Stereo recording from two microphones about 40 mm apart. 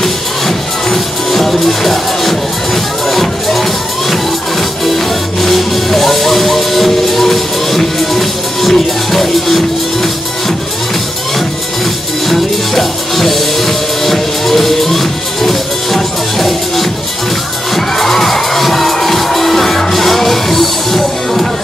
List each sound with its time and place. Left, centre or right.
0.0 s music: centre
4.8 s music: centre
12.3 s music: centre